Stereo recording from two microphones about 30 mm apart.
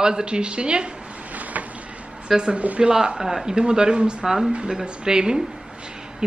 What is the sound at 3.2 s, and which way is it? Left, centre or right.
A woman's voice, right.